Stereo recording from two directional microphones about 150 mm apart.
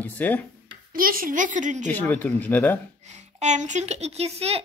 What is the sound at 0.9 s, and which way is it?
Speech, 70° right (ahead or behind).